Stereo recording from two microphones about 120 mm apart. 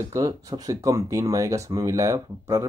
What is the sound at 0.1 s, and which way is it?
Speech, 30° right (ahead or behind).